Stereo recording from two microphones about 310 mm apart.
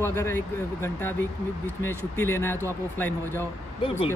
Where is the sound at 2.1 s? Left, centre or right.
Centre.